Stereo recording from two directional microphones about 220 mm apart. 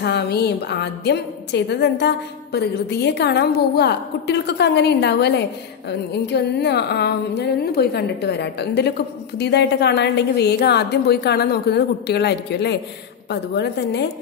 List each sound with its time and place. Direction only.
0.0 s a woman's voice: 50° left (ahead or behind)